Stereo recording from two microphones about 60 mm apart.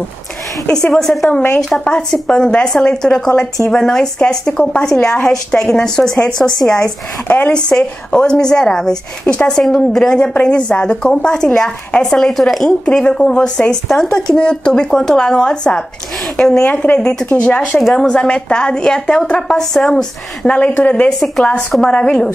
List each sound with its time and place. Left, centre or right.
0.9 s a woman's voice: centre
12.8 s a woman's voice: centre